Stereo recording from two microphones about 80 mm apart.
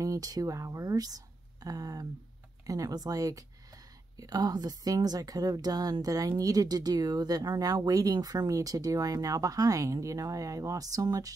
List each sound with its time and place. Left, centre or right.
0.0 s a woman's voice: right